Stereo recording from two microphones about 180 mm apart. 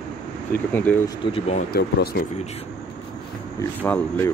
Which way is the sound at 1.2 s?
30° left (ahead or behind).